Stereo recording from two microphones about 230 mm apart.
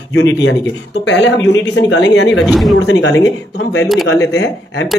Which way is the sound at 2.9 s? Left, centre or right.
Left.